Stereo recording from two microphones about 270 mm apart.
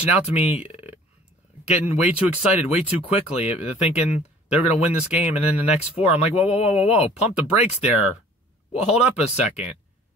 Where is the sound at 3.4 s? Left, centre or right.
Left.